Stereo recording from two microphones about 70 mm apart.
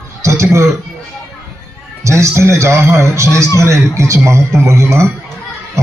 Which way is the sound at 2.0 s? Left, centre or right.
Right.